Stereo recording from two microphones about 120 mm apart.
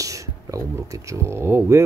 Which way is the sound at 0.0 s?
25° right (ahead or behind).